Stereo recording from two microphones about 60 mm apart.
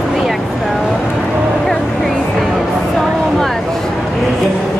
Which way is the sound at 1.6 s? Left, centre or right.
Centre.